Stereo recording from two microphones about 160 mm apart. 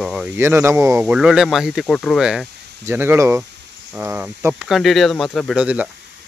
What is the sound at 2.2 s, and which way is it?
Speech, 5° right (ahead or behind).